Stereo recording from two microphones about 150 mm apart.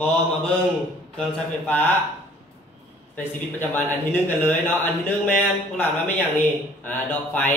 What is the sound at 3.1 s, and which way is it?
A man's voice, 15° left (ahead or behind).